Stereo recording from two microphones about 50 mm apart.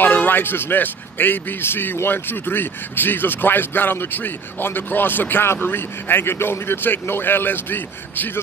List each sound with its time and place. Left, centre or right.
0.0 s speech: left